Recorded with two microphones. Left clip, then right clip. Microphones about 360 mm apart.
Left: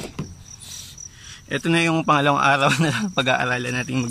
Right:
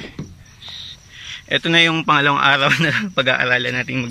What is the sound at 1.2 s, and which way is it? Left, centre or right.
A man's voice, centre.